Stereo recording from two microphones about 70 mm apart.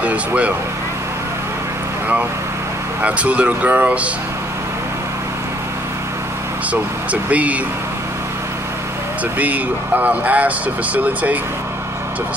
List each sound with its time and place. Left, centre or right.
0.0 s speech: centre
3.0 s speech: right
6.7 s speech: right
9.4 s speech: right